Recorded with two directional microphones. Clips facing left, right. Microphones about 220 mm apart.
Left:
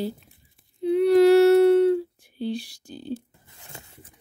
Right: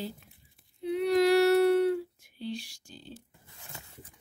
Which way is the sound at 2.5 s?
35° left (ahead or behind).